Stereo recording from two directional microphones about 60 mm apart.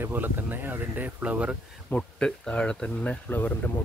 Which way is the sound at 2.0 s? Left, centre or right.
Centre.